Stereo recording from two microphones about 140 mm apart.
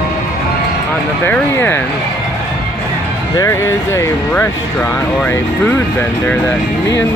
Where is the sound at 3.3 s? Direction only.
20° left (ahead or behind).